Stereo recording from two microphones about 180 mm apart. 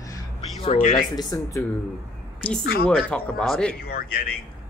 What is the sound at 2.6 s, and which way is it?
Speech, 60° left (ahead or behind).